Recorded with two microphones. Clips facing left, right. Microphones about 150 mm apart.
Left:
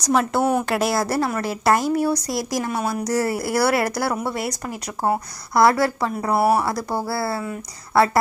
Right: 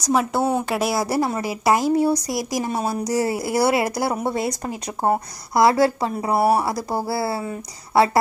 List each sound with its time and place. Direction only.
0.0 s a woman's voice: 5° right (ahead or behind)
0.4 s speech: 25° right (ahead or behind)
0.7 s a woman's voice: 5° right (ahead or behind)
1.0 s speech: 15° right (ahead or behind)
2.7 s speech: 35° right (ahead or behind)
3.0 s speech: 15° right (ahead or behind)
6.3 s speech: 35° right (ahead or behind)
7.0 s a woman's voice: 15° right (ahead or behind)